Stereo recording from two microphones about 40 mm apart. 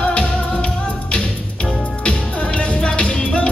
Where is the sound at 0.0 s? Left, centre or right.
Left.